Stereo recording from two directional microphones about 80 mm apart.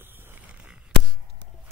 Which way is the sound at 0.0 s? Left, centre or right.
Right.